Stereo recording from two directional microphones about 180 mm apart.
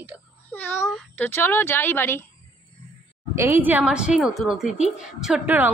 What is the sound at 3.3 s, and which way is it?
A woman's voice, 10° right (ahead or behind).